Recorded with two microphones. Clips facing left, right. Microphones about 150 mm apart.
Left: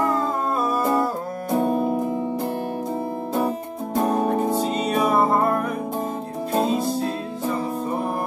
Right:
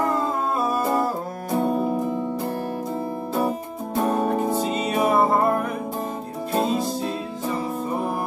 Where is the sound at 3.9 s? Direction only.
Centre (ahead or behind).